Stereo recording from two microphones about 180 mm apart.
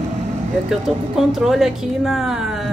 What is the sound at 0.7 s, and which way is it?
Speech, centre (ahead or behind).